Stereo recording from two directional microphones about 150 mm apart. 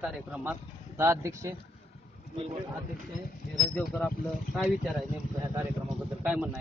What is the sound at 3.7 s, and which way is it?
Speech, 5° left (ahead or behind).